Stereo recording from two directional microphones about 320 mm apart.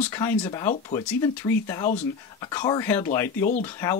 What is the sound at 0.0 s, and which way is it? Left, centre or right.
Speech, centre.